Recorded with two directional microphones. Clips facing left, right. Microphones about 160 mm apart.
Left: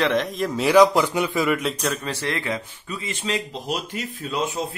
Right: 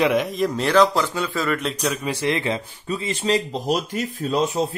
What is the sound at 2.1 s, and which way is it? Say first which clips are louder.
Speech: right 4 dB; 15° right (ahead or behind).